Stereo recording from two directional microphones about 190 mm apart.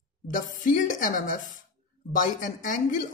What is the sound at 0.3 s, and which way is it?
Speech, 45° left (ahead or behind).